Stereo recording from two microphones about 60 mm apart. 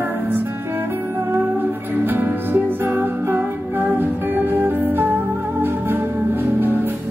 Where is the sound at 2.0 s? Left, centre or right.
Right.